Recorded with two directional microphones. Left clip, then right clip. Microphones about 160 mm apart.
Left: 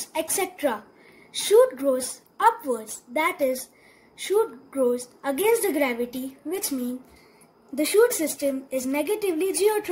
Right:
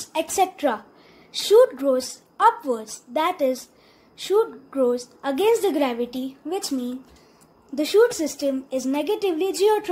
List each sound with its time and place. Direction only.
0.1 s a woman's voice: 30° right (ahead or behind)